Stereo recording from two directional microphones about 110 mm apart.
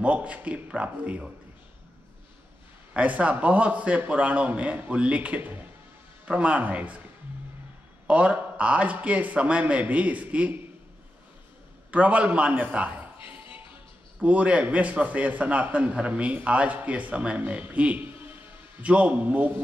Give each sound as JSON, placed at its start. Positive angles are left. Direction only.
{"t": 0.0, "sound": "a man's voice", "side_deg": -10}
{"t": 2.9, "sound": "a man's voice", "side_deg": -15}
{"t": 8.1, "sound": "a man's voice", "side_deg": -15}
{"t": 11.9, "sound": "a man's voice", "side_deg": -15}
{"t": 13.3, "sound": "music", "side_deg": -15}
{"t": 14.2, "sound": "a man's voice", "side_deg": -10}